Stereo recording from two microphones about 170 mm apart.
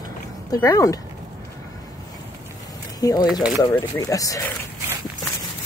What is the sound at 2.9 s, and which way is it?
Speech, 25° left (ahead or behind).